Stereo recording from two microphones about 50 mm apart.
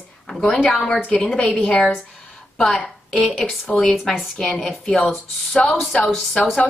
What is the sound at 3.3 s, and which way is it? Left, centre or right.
Speech, centre.